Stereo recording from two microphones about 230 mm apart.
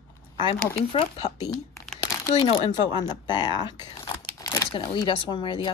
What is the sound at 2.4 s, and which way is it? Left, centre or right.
Speech, left.